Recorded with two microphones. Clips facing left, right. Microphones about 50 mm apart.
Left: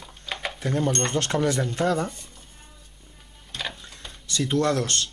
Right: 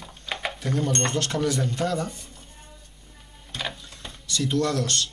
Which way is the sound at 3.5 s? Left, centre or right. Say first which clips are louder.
Right 1 dB; centre.